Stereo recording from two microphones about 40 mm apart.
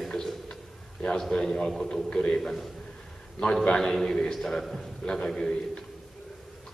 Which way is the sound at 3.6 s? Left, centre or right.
Centre.